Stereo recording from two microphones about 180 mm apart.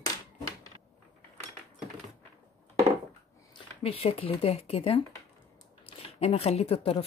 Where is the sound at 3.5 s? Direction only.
35° left (ahead or behind).